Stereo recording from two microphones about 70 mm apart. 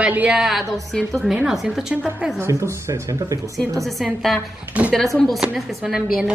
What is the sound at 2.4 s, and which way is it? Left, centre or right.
Speech, right.